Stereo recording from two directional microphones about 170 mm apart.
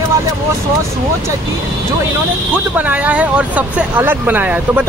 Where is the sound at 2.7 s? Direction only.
10° right (ahead or behind).